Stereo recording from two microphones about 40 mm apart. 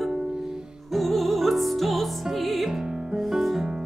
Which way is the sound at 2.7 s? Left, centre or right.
Centre.